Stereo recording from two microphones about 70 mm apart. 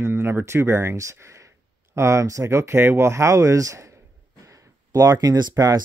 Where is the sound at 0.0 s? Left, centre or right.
Right.